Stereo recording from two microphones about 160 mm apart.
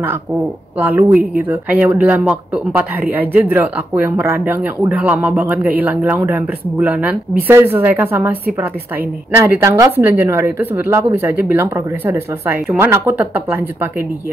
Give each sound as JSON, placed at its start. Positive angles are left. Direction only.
{"t": 0.7, "sound": "speech", "side_deg": -10}
{"t": 9.4, "sound": "speech", "side_deg": -15}